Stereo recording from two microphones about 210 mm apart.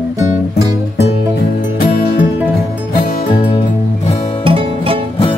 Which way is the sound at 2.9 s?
45° left (ahead or behind).